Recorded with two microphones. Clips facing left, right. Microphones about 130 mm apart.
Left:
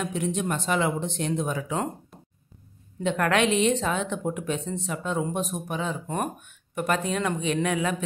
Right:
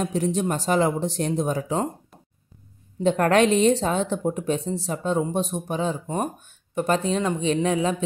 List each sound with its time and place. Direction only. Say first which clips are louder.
0.0 s speech: right 4 dB; 35° right (ahead or behind)
3.0 s speech: right 5 dB; 35° right (ahead or behind)